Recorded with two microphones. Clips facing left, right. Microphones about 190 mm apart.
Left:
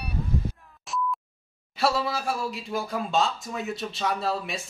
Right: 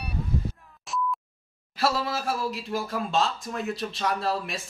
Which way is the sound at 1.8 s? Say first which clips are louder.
Left 1 dB; centre (ahead or behind).